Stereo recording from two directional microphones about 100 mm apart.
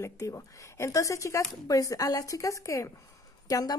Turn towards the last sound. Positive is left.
turn(degrees=35)  # may be behind; listen again after turning